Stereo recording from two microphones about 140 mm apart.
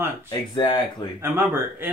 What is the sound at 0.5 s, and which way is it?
Speech, 30° left (ahead or behind).